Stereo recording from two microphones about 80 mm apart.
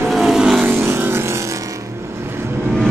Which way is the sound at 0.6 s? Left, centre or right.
Right.